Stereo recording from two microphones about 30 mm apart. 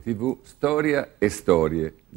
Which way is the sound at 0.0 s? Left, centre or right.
Centre.